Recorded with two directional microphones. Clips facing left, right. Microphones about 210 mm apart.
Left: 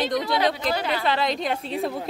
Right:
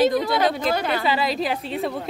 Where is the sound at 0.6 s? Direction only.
50° right (ahead or behind).